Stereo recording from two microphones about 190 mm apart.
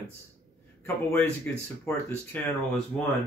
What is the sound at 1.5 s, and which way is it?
A man's voice, 10° left (ahead or behind).